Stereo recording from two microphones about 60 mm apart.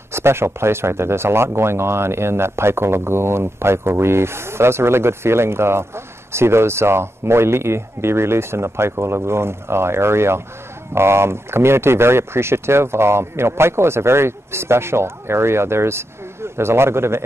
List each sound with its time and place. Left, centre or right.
0.1 s speech: right